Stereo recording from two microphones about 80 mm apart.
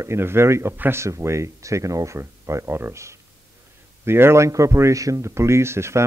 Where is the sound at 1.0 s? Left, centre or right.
Right.